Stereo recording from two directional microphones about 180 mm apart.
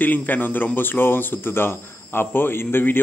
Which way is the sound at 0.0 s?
10° left (ahead or behind).